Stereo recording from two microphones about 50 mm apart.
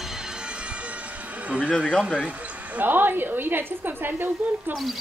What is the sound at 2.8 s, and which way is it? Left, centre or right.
A woman's voice, right.